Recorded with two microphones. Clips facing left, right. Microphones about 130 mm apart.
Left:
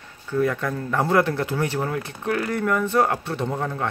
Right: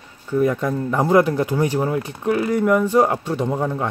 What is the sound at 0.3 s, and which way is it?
Speech, 15° right (ahead or behind).